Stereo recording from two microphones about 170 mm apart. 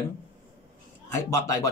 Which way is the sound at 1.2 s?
15° left (ahead or behind).